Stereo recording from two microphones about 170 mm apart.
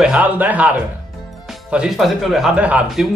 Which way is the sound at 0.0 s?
10° right (ahead or behind).